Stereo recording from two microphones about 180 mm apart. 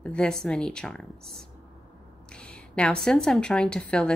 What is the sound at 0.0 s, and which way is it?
A woman's voice, 5° left (ahead or behind).